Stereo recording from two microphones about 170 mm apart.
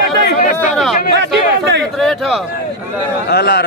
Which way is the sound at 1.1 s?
90° right.